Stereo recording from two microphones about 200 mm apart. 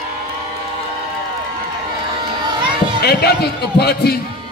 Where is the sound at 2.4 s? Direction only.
20° right (ahead or behind).